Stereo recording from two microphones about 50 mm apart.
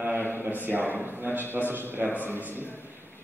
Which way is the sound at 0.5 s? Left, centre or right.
Right.